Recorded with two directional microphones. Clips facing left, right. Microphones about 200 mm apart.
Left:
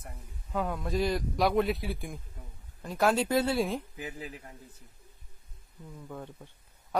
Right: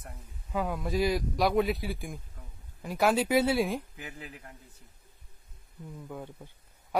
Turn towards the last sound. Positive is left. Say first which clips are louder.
# right 1 dB
turn(degrees=-5)  # may be behind; listen again after turning